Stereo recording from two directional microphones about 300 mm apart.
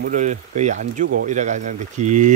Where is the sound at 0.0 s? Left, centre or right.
Right.